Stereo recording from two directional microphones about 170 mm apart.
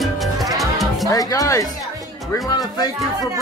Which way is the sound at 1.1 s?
20° left (ahead or behind).